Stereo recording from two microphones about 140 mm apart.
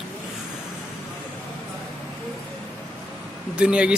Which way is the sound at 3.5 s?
10° right (ahead or behind).